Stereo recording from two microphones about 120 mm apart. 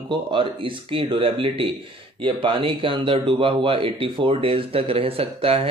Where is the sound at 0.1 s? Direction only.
45° right (ahead or behind).